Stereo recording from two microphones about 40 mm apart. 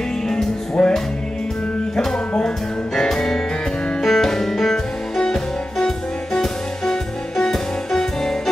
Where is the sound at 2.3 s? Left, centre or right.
Centre.